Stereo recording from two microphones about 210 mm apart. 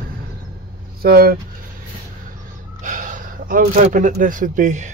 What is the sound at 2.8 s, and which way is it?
Speech, 40° right (ahead or behind).